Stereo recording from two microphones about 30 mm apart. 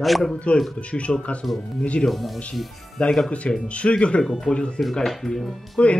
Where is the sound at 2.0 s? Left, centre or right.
Centre.